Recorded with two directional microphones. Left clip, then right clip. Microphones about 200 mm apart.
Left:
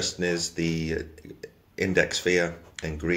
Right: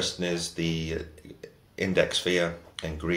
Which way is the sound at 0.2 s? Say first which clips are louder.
Left 3 dB; 40° left (ahead or behind).